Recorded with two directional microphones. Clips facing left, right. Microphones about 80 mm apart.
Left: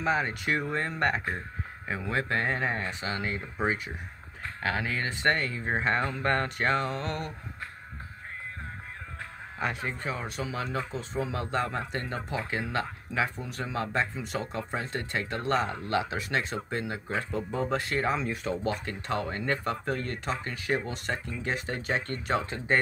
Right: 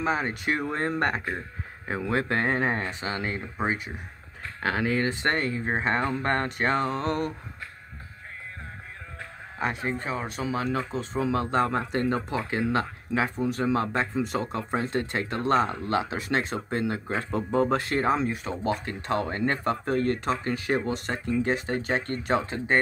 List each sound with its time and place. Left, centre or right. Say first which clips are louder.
0.0 s speech: right 1 dB; right
2.0 s speech: right 4 dB; right
3.6 s speech: right 1 dB; right
4.6 s speech: right 5 dB; right
9.6 s speech: right 3 dB; right